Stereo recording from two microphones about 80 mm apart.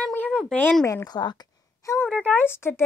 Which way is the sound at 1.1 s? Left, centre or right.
Left.